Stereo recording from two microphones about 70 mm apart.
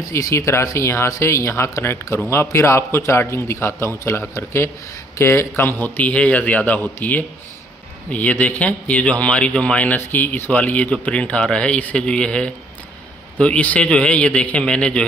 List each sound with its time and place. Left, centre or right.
0.0 s a man's voice: left; by 15.0 s centre